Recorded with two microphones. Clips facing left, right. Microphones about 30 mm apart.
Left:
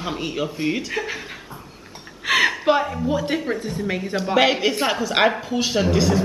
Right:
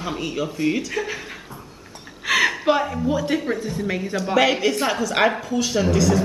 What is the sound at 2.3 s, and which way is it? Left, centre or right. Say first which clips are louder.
Speech: left 1 dB; centre.